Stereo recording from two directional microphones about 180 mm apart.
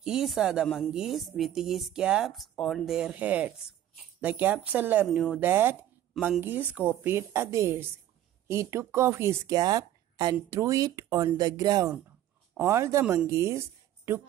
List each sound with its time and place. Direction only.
0.0 s a woman's voice: 5° right (ahead or behind)